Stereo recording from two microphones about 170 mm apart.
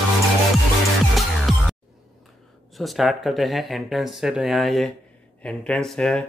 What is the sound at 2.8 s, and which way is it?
Speech, centre (ahead or behind).